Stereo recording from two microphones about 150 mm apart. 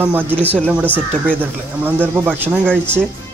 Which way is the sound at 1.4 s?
15° right (ahead or behind).